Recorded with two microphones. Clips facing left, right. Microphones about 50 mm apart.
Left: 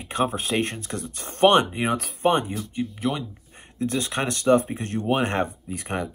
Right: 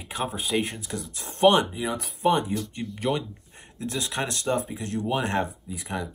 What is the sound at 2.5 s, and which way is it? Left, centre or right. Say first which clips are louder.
Speech: left 3 dB; centre.